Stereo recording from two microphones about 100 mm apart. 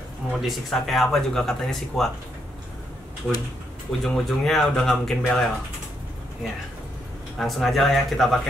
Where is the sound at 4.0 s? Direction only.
5° left (ahead or behind).